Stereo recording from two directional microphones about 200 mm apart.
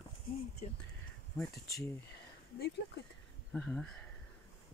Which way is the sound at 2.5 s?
55° left (ahead or behind).